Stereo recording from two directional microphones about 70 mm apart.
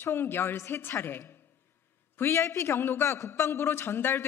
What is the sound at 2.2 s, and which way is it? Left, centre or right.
A woman's voice, left.